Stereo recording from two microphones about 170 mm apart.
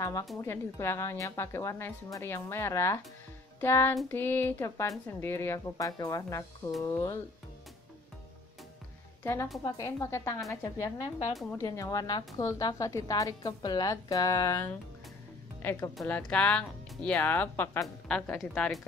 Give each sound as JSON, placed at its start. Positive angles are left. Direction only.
{"t": 0.0, "sound": "a woman's voice", "side_deg": 20}
{"t": 9.2, "sound": "a woman's voice", "side_deg": 15}